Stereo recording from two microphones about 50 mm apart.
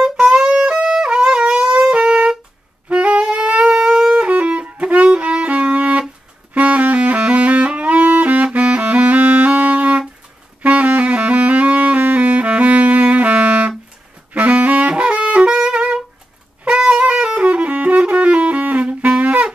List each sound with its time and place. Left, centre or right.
0.0 s music: centre
0.7 s wind instrument: centre
2.9 s music: right
6.5 s saxophone: right
8.5 s music: right
10.6 s saxophone: right